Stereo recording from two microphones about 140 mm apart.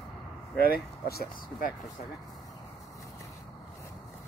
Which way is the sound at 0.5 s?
90° left.